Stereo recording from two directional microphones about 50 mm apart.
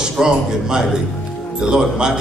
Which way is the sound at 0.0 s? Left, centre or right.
Centre.